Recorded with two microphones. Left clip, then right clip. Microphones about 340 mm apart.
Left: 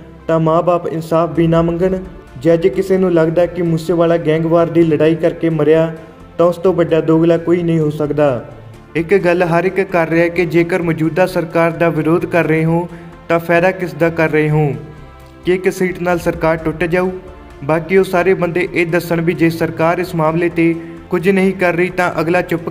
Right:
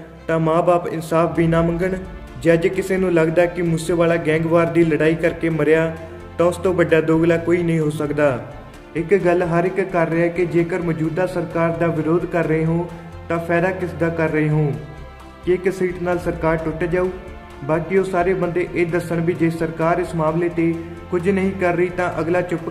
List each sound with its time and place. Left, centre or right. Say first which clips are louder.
0.3 s a man's voice: left 4 dB; centre